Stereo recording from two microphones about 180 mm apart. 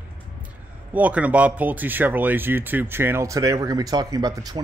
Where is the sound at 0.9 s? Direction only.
10° right (ahead or behind).